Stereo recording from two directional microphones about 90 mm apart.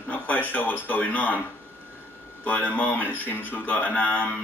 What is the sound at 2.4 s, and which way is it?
A man's voice, 20° left (ahead or behind).